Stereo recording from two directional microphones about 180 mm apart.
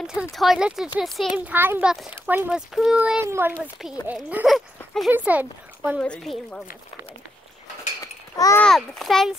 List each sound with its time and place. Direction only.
0.0 s a child's voice: 5° right (ahead or behind)
5.9 s a child's voice: 5° left (ahead or behind)
8.0 s a sound: 15° left (ahead or behind)
8.6 s a child's voice: centre (ahead or behind)